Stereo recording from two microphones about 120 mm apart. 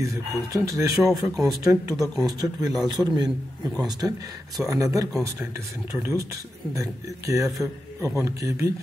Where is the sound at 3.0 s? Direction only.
5° right (ahead or behind).